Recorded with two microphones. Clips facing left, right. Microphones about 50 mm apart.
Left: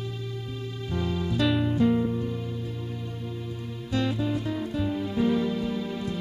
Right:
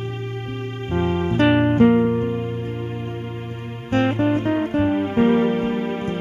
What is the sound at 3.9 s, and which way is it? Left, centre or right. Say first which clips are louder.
Music: right 9 dB; right.